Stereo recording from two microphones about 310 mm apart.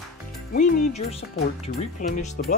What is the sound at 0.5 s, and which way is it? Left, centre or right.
Speech, left.